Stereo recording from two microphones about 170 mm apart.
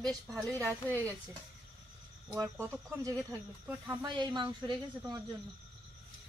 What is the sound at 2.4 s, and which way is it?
Speech, 20° right (ahead or behind).